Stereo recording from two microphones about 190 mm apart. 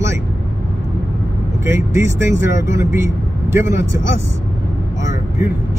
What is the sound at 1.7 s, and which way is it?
Speech, 15° right (ahead or behind).